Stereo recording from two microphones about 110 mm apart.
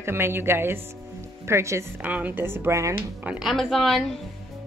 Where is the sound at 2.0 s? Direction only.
15° right (ahead or behind).